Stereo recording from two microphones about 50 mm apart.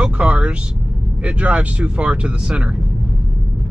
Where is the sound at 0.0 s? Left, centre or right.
Right.